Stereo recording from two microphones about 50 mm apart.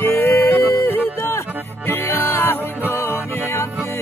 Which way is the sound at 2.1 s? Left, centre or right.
Left.